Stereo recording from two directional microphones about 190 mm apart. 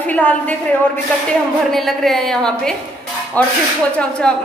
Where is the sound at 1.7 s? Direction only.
Centre (ahead or behind).